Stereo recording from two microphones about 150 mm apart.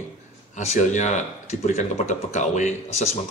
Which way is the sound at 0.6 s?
50° left (ahead or behind).